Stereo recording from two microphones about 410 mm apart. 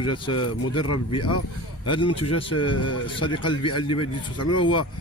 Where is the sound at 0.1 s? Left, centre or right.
Left.